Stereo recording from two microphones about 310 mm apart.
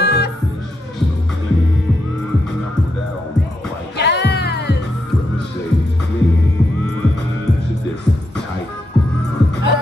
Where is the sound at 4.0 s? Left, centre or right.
Left.